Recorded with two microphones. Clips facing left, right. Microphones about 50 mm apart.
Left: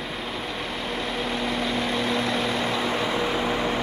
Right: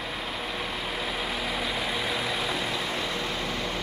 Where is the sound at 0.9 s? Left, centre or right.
Centre.